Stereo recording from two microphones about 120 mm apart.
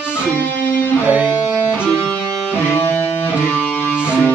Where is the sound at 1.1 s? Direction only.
15° right (ahead or behind).